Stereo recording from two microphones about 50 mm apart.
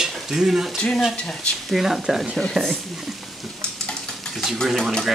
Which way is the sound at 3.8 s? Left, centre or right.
Centre.